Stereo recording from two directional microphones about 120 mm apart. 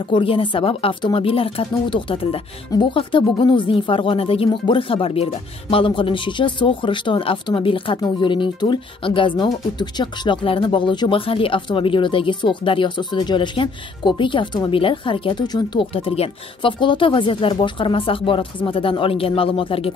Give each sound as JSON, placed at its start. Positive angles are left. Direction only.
{"t": 0.1, "sound": "speech", "side_deg": 45}
{"t": 15.9, "sound": "speech", "side_deg": 50}